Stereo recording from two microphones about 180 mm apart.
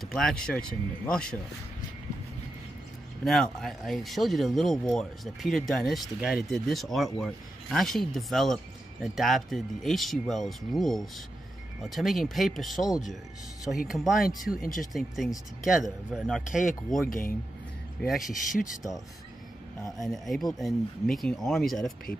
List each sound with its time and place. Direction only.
0.0 s speech: 5° left (ahead or behind)
3.3 s speech: centre (ahead or behind)
14.6 s speech: 50° left (ahead or behind)
14.9 s speech: centre (ahead or behind)
18.3 s speech: 50° left (ahead or behind)
20.0 s speech: centre (ahead or behind)